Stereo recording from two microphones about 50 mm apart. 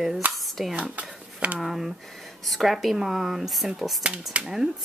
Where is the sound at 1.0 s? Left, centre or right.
Right.